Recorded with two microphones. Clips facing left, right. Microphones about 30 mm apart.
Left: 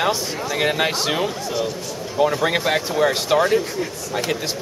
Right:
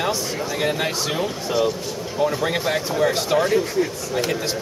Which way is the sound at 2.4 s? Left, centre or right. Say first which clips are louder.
Left 2 dB; centre.